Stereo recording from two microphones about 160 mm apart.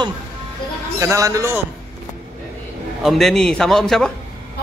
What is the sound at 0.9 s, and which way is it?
Speech, 20° right (ahead or behind).